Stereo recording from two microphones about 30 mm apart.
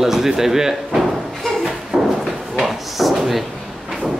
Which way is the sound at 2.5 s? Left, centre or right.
Centre.